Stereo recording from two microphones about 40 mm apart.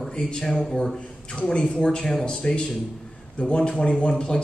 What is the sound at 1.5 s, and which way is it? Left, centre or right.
A man's voice, left.